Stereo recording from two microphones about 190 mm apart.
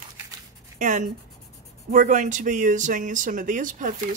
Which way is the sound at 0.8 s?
40° right (ahead or behind).